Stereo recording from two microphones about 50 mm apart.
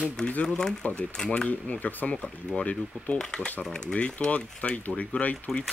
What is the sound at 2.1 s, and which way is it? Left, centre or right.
Speech, centre.